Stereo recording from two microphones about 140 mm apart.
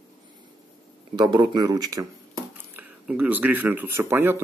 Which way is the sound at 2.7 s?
10° right (ahead or behind).